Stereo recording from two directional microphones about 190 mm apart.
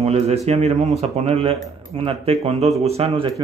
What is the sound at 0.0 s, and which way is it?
Speech, 35° right (ahead or behind).